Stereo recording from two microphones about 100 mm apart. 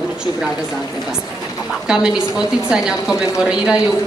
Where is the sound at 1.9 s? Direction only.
5° right (ahead or behind).